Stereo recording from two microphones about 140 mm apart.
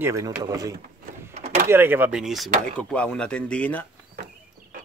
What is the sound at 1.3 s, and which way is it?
Door, 55° right (ahead or behind).